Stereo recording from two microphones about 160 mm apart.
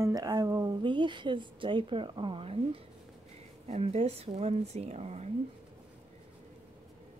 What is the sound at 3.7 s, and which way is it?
Speech, 40° right (ahead or behind).